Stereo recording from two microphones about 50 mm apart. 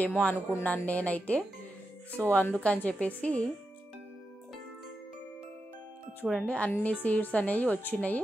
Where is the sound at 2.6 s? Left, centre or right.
Left.